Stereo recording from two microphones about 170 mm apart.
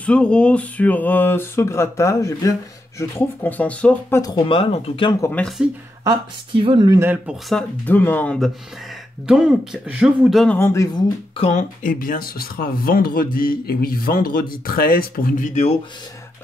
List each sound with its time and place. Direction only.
0.0 s speech: 5° left (ahead or behind)
4.2 s speech: 25° left (ahead or behind)
5.2 s speech: 10° left (ahead or behind)
6.0 s speech: 30° right (ahead or behind)
7.0 s speech: 10° right (ahead or behind)
7.4 s speech: 5° left (ahead or behind)
9.3 s speech: 5° right (ahead or behind)
10.6 s speech: 15° left (ahead or behind)
11.3 s speech: 35° left (ahead or behind)
11.8 s speech: 55° left (ahead or behind)